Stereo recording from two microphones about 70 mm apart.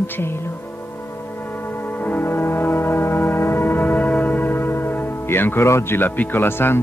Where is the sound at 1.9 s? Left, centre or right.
Left.